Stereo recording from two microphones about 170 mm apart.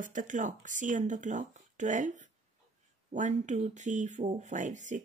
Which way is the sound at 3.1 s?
45° right (ahead or behind).